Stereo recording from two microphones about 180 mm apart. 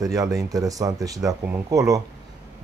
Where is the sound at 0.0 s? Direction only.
20° right (ahead or behind).